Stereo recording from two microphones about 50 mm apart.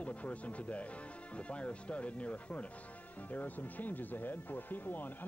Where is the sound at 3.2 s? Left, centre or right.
Left.